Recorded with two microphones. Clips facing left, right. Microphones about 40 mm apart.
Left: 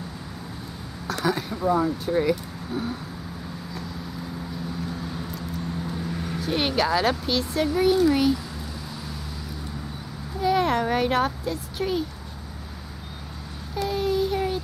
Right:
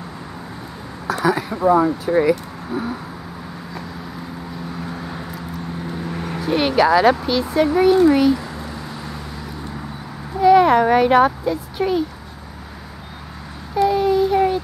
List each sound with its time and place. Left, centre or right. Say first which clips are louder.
1.1 s a sound: right 7 dB; centre
1.5 s speech: right 9 dB; right
2.2 s speech: right 6 dB; centre
4.8 s vehicle: right 3 dB; right
6.4 s a child's voice: right 8 dB; centre
7.6 s speech: right 7 dB; centre
10.4 s a child's voice: right 10 dB; centre
13.7 s child singing: right 8 dB; centre